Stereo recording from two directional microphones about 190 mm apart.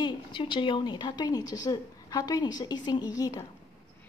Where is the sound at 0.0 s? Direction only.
25° left (ahead or behind).